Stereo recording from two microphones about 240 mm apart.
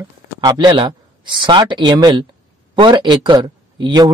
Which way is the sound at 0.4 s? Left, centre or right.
Centre.